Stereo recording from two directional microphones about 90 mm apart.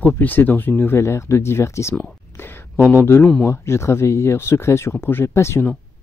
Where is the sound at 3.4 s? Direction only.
30° left (ahead or behind).